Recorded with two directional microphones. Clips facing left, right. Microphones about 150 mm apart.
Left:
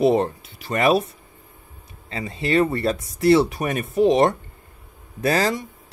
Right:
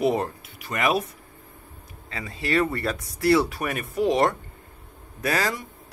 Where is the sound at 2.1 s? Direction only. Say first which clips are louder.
Left 4 dB; 25° left (ahead or behind).